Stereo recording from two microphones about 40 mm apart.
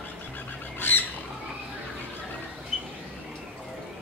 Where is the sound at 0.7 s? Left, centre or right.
Left.